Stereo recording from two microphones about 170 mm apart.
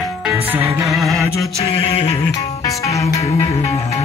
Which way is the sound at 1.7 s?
35° left (ahead or behind).